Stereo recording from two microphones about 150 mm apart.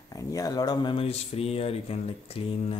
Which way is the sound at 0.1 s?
25° left (ahead or behind).